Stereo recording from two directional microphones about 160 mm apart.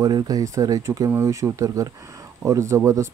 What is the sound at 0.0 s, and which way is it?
Speech, 25° right (ahead or behind).